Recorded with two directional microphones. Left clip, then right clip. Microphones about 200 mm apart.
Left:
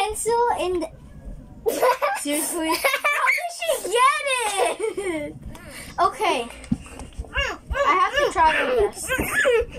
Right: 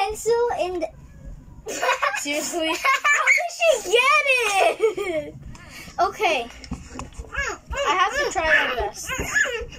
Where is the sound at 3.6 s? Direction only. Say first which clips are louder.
Right 1 dB; 10° right (ahead or behind).